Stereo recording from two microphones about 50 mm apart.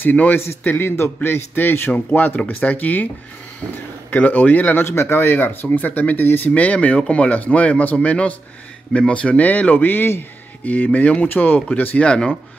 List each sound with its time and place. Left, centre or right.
0.0 s speech: left
0.7 s speech: left
2.1 s speech: left
4.1 s speech: left
4.8 s speech: left
6.5 s speech: left
10.6 s speech: left
12.0 s speech: left